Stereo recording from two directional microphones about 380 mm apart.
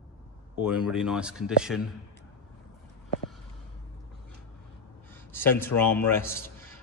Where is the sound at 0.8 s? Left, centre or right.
Centre.